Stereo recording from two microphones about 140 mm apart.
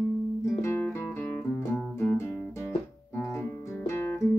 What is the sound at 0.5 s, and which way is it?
Music, 20° left (ahead or behind).